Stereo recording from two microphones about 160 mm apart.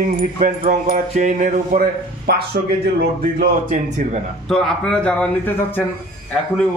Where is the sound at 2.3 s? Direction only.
75° right (ahead or behind).